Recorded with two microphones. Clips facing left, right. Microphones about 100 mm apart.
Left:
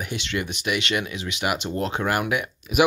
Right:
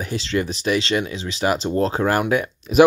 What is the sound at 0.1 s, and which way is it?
Speech, 35° right (ahead or behind).